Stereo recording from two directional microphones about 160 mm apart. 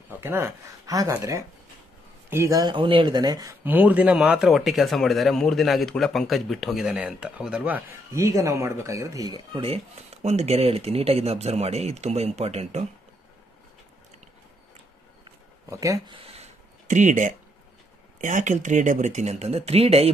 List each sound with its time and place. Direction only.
0.2 s speech: 15° right (ahead or behind)
3.6 s speech: 10° right (ahead or behind); by 12.8 s 40° right (ahead or behind)
15.7 s speech: 20° right (ahead or behind)
16.3 s a sound: 45° right (ahead or behind)
18.2 s speech: 50° right (ahead or behind)